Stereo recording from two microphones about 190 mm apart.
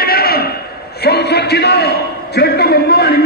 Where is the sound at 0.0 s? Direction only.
55° left (ahead or behind).